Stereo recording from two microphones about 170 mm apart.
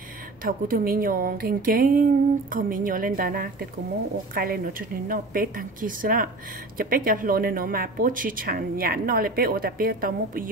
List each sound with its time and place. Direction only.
0.4 s speech: 55° right (ahead or behind)